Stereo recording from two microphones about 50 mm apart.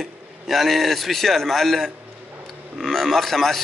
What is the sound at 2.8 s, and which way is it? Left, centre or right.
Speech, centre.